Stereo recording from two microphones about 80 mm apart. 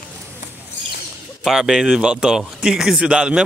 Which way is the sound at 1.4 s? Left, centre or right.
Centre.